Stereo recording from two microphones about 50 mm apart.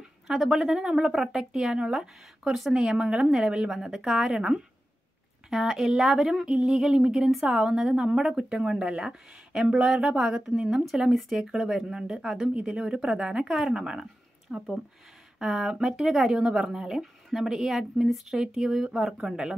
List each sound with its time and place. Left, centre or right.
0.3 s speech: centre
6.5 s a sound: centre
6.9 s speech: centre